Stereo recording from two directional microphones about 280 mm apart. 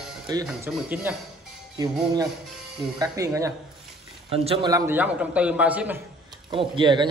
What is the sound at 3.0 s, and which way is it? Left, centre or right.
A man's voice, centre.